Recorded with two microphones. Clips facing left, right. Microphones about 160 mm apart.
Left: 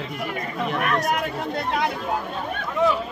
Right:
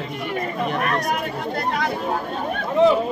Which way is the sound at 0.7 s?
35° right (ahead or behind).